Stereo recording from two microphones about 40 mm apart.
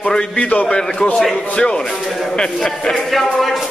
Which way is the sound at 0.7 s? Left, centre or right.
Centre.